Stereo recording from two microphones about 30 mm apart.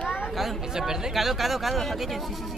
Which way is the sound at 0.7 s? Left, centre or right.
Centre.